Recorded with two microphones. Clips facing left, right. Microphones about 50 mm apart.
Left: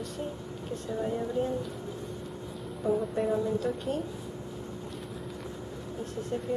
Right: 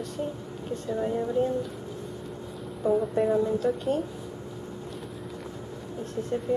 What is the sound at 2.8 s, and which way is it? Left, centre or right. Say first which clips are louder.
A woman's voice: right 4 dB; centre.